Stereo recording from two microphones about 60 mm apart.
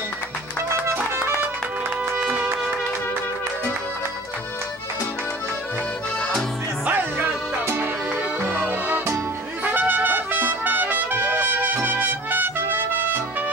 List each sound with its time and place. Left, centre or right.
1.1 s music: right
2.1 s music: centre
6.9 s music: right
9.7 s trumpet: right